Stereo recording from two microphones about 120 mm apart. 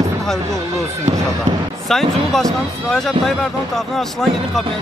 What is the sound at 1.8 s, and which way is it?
Speech, 5° left (ahead or behind).